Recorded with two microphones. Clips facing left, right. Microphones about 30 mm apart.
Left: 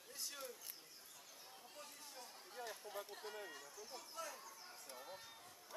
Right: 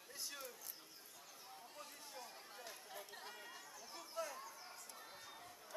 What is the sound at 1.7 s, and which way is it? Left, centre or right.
Run, centre.